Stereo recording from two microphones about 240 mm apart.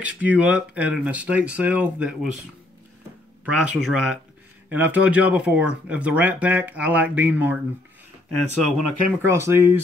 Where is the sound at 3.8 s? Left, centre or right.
Centre.